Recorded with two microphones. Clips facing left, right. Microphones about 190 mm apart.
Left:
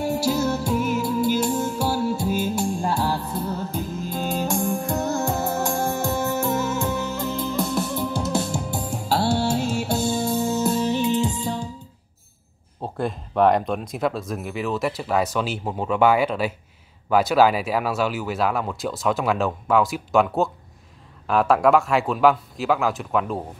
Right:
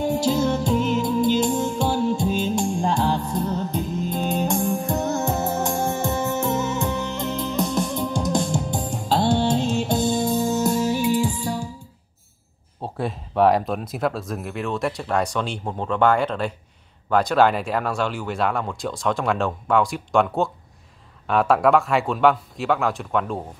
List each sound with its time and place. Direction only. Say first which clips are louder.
0.0 s music: right 2 dB; 10° left (ahead or behind)
3.1 s music: right 3 dB; 15° right (ahead or behind)
3.4 s music: right 2 dB; 5° left (ahead or behind)
7.3 s music: right 2 dB; 15° right (ahead or behind)
8.4 s music: right 2 dB; 5° left (ahead or behind)
10.0 s music: right 2 dB; 15° right (ahead or behind)
12.8 s speech: left 1 dB; centre (ahead or behind)